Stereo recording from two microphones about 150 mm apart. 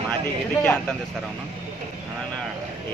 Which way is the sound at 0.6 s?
10° left (ahead or behind).